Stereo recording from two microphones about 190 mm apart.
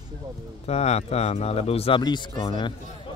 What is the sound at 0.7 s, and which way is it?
Speech, 35° left (ahead or behind).